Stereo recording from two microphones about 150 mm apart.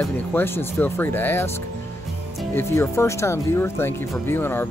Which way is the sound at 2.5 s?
15° left (ahead or behind).